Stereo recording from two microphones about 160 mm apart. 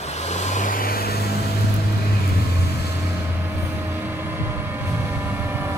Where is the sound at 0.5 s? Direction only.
60° left (ahead or behind).